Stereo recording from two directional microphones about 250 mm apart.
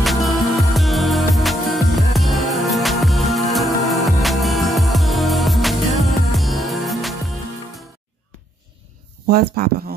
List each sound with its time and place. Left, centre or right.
0.0 s music: centre
9.3 s speech: right